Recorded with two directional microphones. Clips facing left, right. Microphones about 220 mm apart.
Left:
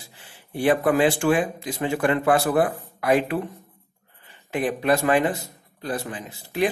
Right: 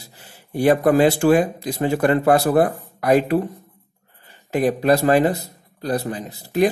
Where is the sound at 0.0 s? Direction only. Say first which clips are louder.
Right 3 dB; 40° right (ahead or behind).